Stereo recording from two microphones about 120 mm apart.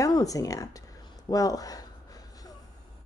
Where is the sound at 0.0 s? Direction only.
30° left (ahead or behind).